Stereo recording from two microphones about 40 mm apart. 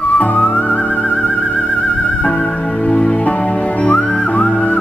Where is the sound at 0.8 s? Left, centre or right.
Left.